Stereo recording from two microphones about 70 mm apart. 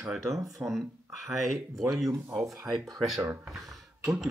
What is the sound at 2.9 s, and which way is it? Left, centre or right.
Speech, centre.